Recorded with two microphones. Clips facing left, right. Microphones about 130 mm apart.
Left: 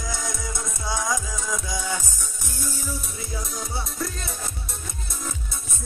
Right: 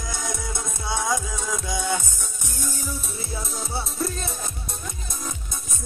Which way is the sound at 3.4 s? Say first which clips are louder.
Right 2 dB; 25° right (ahead or behind).